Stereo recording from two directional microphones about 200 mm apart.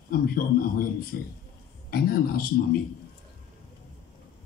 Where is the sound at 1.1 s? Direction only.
50° left (ahead or behind).